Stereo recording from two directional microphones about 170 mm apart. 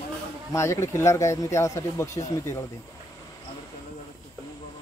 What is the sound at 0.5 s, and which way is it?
Speech, 15° left (ahead or behind).